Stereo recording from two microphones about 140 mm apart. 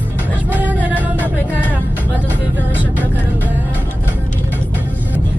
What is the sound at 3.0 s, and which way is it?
Music, 10° right (ahead or behind).